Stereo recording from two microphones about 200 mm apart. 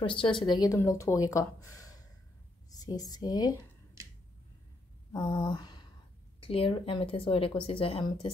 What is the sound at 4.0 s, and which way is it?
Finger snapping, 15° right (ahead or behind).